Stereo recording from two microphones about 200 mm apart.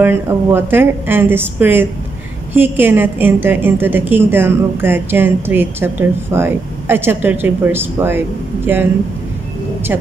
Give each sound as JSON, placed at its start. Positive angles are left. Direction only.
{"t": 0.0, "sound": "a woman's voice", "side_deg": -10}